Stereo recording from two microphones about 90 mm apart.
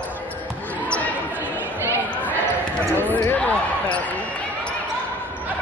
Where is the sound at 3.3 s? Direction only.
15° left (ahead or behind).